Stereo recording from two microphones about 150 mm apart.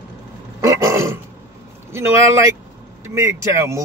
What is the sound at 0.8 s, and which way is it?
Dog, 20° right (ahead or behind).